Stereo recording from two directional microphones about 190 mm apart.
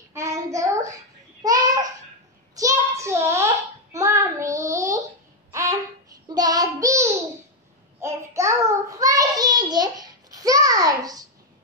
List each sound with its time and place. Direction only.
0.1 s child singing: 15° right (ahead or behind)
1.4 s babbling: 20° right (ahead or behind)
2.5 s a sound: 15° right (ahead or behind)
6.2 s child singing: 20° right (ahead or behind)